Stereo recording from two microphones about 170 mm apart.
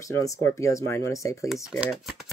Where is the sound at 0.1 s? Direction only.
15° left (ahead or behind).